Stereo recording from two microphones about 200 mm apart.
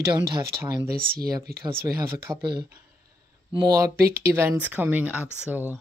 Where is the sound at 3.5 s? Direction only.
20° right (ahead or behind).